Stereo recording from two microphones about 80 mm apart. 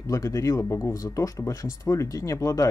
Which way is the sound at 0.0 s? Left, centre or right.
Left.